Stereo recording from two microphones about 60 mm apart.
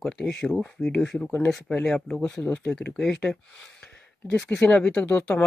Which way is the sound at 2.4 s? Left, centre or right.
Left.